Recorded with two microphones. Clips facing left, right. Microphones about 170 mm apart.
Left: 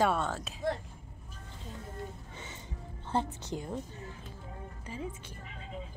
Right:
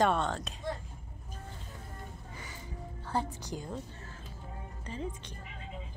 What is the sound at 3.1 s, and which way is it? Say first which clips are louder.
Speech: left 2 dB; 20° left (ahead or behind).